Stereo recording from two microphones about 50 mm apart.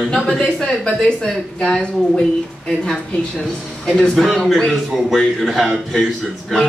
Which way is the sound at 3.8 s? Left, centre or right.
Centre.